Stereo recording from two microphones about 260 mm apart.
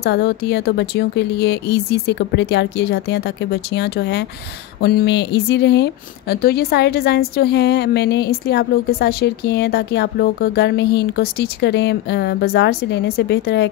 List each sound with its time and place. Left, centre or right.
0.0 s speech: left